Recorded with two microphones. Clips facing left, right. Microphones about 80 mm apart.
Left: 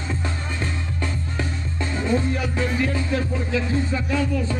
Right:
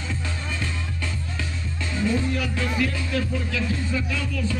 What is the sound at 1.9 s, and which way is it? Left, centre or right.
Music, left.